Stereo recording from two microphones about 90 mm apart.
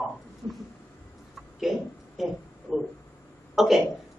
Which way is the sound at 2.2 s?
5° right (ahead or behind).